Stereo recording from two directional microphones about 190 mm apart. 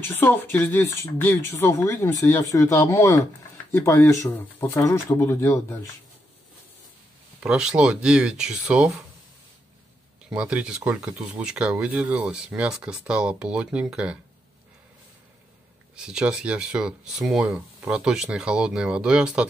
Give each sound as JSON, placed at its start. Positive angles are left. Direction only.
{"t": 0.1, "sound": "speech", "side_deg": 10}
{"t": 7.3, "sound": "speech", "side_deg": -5}
{"t": 10.3, "sound": "speech", "side_deg": -5}
{"t": 16.0, "sound": "speech", "side_deg": -5}